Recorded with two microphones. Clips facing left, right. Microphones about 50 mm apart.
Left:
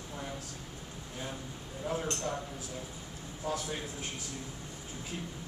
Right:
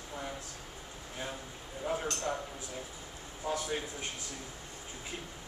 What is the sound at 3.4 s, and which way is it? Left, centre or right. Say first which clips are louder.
Speech: right 1 dB; centre.